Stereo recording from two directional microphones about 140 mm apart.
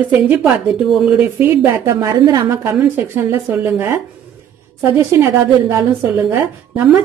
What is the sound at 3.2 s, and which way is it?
A woman's voice, 15° right (ahead or behind).